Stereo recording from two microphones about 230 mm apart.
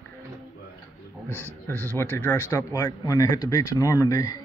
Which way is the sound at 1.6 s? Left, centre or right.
Centre.